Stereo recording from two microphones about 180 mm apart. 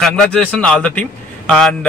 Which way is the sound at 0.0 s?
5° left (ahead or behind).